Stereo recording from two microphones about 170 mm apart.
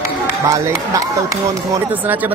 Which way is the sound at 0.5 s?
20° right (ahead or behind).